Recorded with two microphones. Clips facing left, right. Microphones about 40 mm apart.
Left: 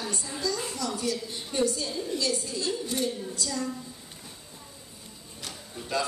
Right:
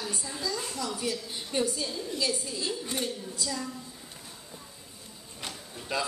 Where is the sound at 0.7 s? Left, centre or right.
Centre.